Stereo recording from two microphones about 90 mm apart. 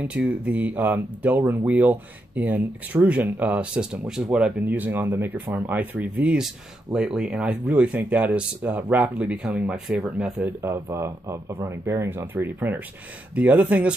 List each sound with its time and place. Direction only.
0.0 s speech: 15° right (ahead or behind)
10.4 s speech: 30° right (ahead or behind); by 13.9 s 15° right (ahead or behind)